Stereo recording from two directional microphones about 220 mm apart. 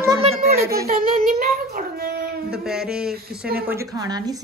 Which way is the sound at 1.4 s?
45° right (ahead or behind).